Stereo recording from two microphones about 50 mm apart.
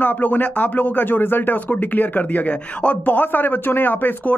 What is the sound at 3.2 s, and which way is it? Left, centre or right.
Speech, left.